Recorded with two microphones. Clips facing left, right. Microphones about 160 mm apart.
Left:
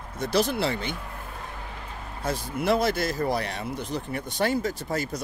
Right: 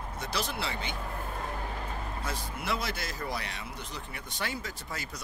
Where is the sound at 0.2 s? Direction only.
45° left (ahead or behind).